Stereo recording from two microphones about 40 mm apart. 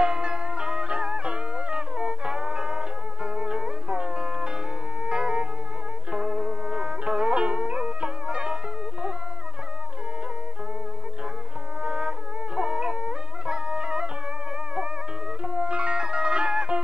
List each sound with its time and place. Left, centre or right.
0.0 s music: right
11.8 s music: right
15.4 s music: right